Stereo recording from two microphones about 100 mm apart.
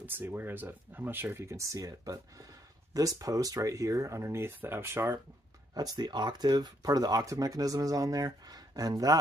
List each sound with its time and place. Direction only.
0.0 s speech: 20° right (ahead or behind)
5.8 s speech: 40° right (ahead or behind)